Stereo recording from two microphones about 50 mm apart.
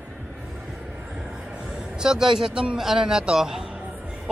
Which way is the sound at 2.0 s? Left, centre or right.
Centre.